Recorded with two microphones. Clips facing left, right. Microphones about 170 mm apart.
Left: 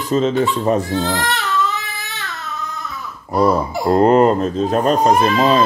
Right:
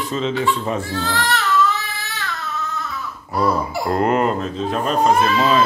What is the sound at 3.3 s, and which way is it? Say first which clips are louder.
Speech: left 4 dB; 25° left (ahead or behind).